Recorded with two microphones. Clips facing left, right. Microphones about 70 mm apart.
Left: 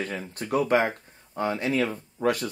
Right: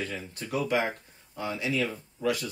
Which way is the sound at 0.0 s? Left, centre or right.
Left.